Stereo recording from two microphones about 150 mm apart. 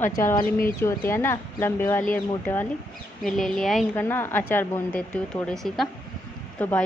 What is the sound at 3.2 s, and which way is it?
Speech, 5° left (ahead or behind).